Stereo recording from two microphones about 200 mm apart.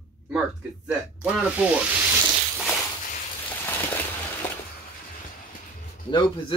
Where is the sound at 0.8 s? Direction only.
5° right (ahead or behind).